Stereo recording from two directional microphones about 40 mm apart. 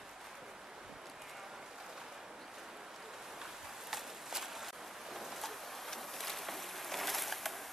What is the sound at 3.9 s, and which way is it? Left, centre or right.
Walk, centre.